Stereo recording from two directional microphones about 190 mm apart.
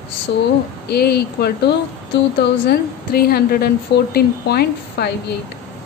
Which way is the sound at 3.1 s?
55° left (ahead or behind).